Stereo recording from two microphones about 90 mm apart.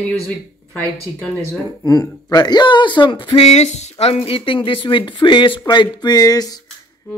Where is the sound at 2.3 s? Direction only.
50° left (ahead or behind).